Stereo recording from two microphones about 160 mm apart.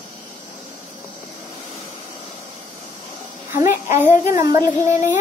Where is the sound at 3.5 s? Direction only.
15° right (ahead or behind).